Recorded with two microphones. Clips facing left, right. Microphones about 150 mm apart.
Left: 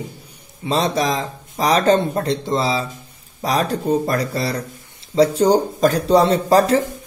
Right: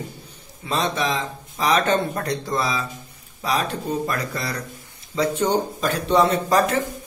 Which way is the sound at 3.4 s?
40° left (ahead or behind).